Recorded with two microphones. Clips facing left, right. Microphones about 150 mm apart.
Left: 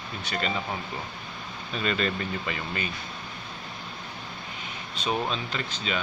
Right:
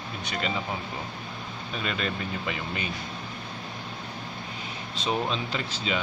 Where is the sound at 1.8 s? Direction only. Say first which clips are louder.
Left 4 dB; 10° right (ahead or behind).